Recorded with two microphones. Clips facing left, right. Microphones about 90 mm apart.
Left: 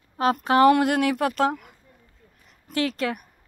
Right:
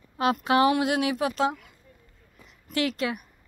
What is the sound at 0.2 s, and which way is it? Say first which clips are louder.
Speech: left 4 dB; 40° left (ahead or behind).